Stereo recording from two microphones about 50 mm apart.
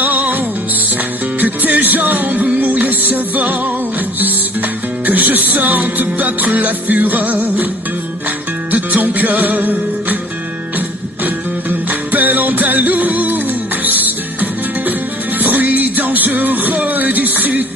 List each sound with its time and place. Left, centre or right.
0.0 s music: right
8.7 s music: right
11.9 s music: right